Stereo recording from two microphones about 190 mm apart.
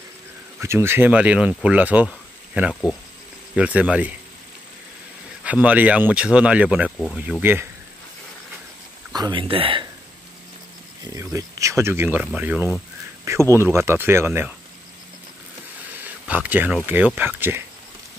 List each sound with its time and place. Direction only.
0.6 s speech: 15° right (ahead or behind)
2.7 s speech: 5° left (ahead or behind)
3.5 s speech: 5° right (ahead or behind)
5.4 s speech: 5° right (ahead or behind)
9.1 s speech: 25° right (ahead or behind)
11.3 s speech: 15° right (ahead or behind)
16.0 s speech: 10° right (ahead or behind)